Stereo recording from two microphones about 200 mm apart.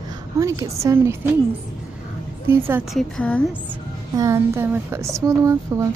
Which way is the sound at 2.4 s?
10° right (ahead or behind).